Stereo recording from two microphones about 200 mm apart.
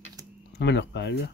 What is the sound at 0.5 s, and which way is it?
Speech, 60° left (ahead or behind).